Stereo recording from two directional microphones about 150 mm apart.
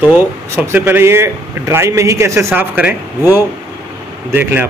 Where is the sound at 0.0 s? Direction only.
10° right (ahead or behind).